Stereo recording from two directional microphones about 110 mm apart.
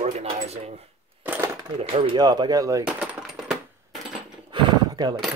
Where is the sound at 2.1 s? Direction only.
40° right (ahead or behind).